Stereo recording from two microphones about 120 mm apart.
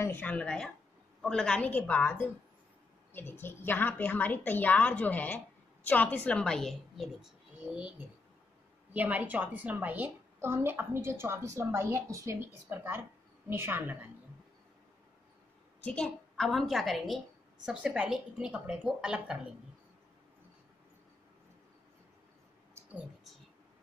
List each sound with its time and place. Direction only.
0.0 s a woman's voice: 15° left (ahead or behind); by 7.9 s 5° right (ahead or behind)
8.9 s a woman's voice: 10° right (ahead or behind)
15.8 s a woman's voice: 5° left (ahead or behind)